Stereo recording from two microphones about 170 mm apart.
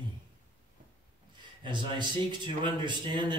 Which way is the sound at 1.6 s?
25° right (ahead or behind).